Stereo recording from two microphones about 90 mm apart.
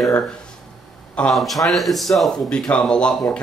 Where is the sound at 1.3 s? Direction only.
Centre (ahead or behind).